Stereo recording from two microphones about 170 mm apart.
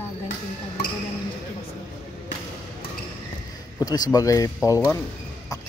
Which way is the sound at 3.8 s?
20° left (ahead or behind).